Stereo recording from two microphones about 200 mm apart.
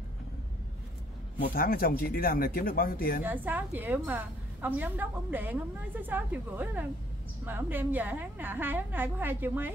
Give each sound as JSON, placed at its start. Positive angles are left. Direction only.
{"t": 1.4, "sound": "speech", "side_deg": 45}
{"t": 3.3, "sound": "a woman's voice", "side_deg": -10}